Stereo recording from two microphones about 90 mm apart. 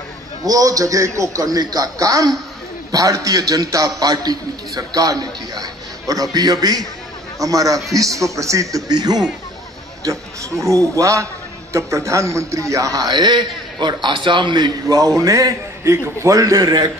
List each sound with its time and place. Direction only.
0.5 s a man's voice: 40° right (ahead or behind)
10.0 s a man's voice: 35° right (ahead or behind)